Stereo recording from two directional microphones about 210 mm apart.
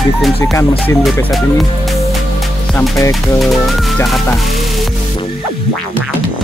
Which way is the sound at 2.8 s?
15° left (ahead or behind).